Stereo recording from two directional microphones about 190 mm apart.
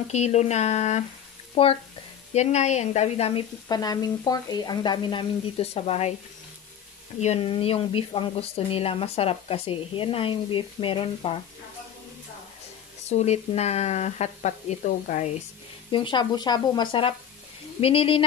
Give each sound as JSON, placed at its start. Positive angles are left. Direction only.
{"t": 0.1, "sound": "speech", "side_deg": 35}
{"t": 3.6, "sound": "speech", "side_deg": 20}
{"t": 7.2, "sound": "speech", "side_deg": 30}
{"t": 13.1, "sound": "speech", "side_deg": 35}
{"t": 15.9, "sound": "speech", "side_deg": 25}